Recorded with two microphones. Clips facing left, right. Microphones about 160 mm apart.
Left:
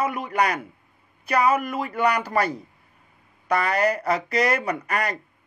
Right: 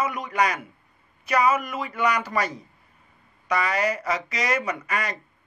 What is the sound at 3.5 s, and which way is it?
Speech, 55° left (ahead or behind).